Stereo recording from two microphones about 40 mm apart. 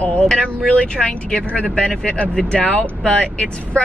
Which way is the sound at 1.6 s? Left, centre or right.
Centre.